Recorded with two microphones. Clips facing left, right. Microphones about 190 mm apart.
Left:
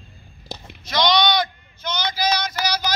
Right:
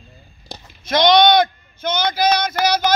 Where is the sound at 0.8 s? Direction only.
55° right (ahead or behind).